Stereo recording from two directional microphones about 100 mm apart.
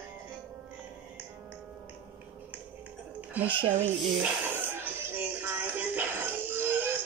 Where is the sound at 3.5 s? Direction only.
60° right (ahead or behind).